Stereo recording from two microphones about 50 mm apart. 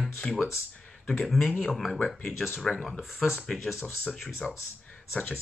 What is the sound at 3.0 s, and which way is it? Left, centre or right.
Speech, centre.